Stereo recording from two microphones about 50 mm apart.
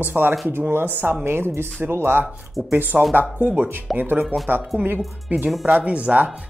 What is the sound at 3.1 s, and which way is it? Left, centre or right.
Speech, right.